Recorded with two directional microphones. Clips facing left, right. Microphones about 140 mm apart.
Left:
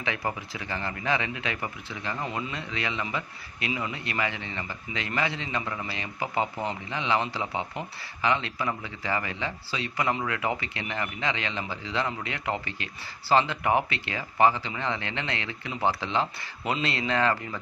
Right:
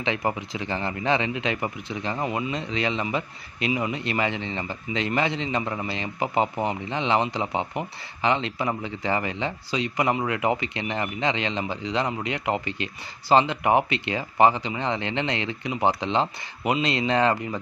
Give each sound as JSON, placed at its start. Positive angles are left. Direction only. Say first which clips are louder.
{"t": 0.0, "sound": "speech", "louder": "right 5 dB", "side_deg": -20}